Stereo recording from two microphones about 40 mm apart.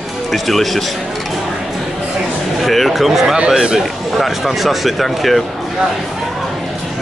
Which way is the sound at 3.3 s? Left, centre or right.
Right.